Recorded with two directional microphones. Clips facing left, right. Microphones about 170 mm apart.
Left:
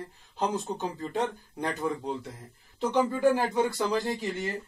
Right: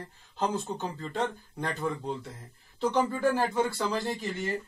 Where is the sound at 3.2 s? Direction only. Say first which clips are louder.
Left 2 dB; 15° left (ahead or behind).